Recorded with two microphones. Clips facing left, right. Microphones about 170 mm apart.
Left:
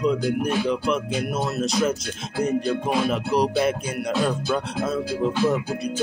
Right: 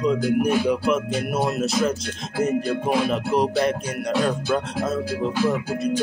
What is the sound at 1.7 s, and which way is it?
Music, centre (ahead or behind).